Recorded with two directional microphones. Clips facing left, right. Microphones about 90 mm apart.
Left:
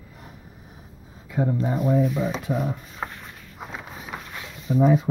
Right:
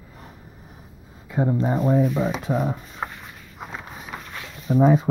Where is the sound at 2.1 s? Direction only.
20° right (ahead or behind).